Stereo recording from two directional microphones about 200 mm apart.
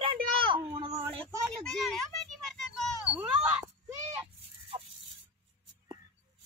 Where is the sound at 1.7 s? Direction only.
Centre (ahead or behind).